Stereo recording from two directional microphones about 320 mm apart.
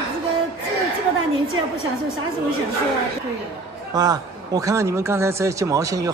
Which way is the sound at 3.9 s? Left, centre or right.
Centre.